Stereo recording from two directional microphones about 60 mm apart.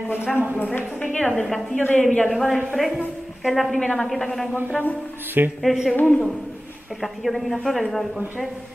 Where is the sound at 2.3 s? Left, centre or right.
Centre.